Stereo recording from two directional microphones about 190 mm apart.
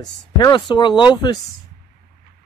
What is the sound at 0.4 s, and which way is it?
Speech, 25° left (ahead or behind).